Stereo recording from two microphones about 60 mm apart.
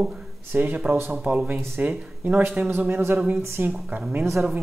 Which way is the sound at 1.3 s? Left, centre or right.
Right.